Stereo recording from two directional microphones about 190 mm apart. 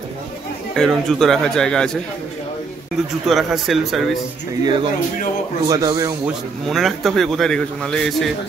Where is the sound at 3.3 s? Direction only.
Centre (ahead or behind).